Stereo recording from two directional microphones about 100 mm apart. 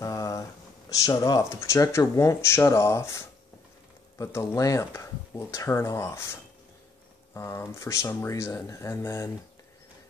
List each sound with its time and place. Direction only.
0.0 s speech: 35° left (ahead or behind)
7.3 s speech: 25° left (ahead or behind)